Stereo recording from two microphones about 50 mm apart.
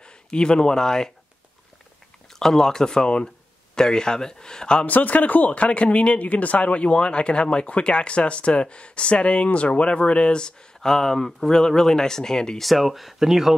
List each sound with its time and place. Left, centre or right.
0.0 s speech: centre
2.3 s a man's voice: centre
4.8 s speech: left; by 12.6 s centre
12.6 s speech: centre